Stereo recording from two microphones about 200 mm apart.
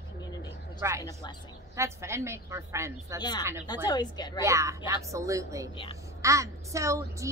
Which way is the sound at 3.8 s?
20° left (ahead or behind).